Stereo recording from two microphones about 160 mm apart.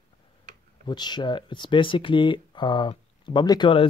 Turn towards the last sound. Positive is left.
turn(degrees=30)  # may be behind; listen again after turning